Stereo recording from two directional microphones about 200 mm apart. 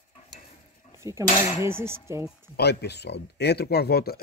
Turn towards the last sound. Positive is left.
turn(degrees=50)  # may be behind; listen again after turning